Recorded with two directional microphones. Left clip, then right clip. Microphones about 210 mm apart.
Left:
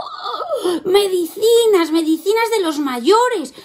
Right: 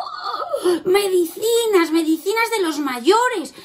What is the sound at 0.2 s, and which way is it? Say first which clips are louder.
Laughter: left 2 dB; 25° left (ahead or behind).